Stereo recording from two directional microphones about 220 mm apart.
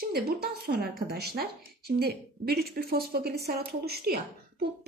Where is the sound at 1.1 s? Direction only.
45° right (ahead or behind).